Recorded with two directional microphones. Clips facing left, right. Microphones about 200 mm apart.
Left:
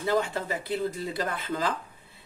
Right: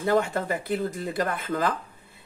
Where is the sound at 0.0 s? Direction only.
50° right (ahead or behind).